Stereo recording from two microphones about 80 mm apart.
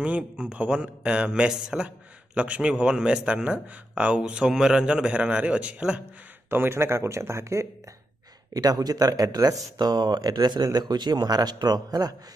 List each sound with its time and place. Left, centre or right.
0.0 s a man's voice: centre
6.5 s speech: right
8.5 s speech: right